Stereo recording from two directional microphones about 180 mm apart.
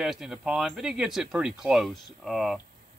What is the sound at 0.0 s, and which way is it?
Speech, centre (ahead or behind).